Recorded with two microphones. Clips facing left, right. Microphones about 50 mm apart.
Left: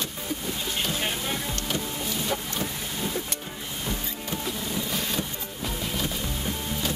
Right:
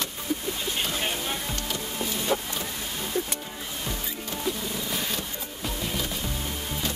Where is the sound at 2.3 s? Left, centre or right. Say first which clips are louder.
Right 5 dB; right.